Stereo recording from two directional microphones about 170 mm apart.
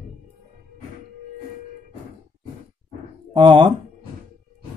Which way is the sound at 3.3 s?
25° right (ahead or behind).